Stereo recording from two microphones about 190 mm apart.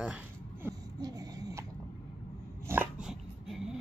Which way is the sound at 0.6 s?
20° right (ahead or behind).